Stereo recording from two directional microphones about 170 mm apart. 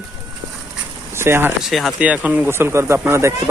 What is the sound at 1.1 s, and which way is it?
Speech, 15° right (ahead or behind).